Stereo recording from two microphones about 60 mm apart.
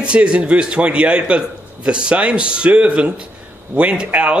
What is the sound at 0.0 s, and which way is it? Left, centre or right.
A man's voice, centre.